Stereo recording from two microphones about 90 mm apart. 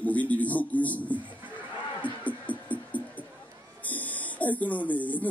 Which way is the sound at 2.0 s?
15° left (ahead or behind).